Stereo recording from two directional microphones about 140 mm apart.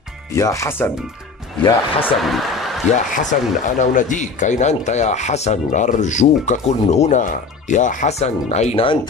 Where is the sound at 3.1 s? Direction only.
65° left (ahead or behind).